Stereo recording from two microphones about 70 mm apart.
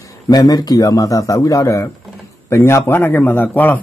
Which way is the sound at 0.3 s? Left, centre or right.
Left.